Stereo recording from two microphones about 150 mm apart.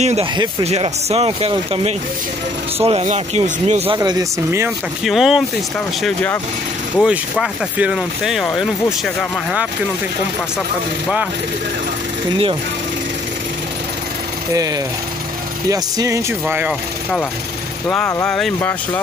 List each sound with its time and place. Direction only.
0.0 s speech: 45° right (ahead or behind)
3.9 s speech: 25° right (ahead or behind)
4.5 s speech: 15° right (ahead or behind)
5.0 s speech: centre (ahead or behind)
6.0 s speech: 10° left (ahead or behind)
7.0 s speech: 5° right (ahead or behind)
14.5 s speech: 25° right (ahead or behind)
17.8 s speech: 15° left (ahead or behind)